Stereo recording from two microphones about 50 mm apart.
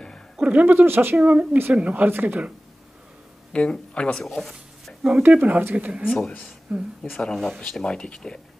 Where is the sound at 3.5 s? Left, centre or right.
Left.